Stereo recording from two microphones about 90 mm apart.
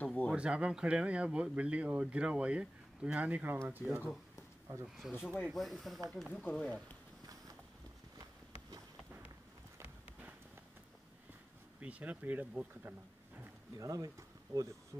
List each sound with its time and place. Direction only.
0.0 s speech: 15° left (ahead or behind)
0.3 s speech: 10° right (ahead or behind)
4.8 s speech: 5° right (ahead or behind); by 7.0 s 10° left (ahead or behind)
11.8 s speech: 15° right (ahead or behind)
13.7 s speech: 40° right (ahead or behind)